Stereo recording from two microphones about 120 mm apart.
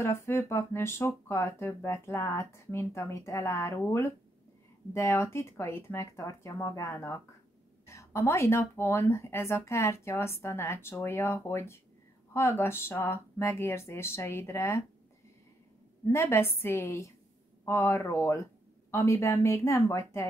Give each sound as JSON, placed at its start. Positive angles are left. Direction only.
{"t": 0.0, "sound": "speech", "side_deg": 20}
{"t": 16.1, "sound": "speech", "side_deg": 20}